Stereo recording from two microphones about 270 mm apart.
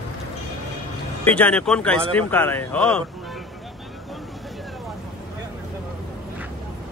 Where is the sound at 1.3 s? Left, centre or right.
Centre.